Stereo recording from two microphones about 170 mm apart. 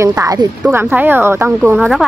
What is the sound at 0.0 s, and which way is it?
Speech, 20° right (ahead or behind).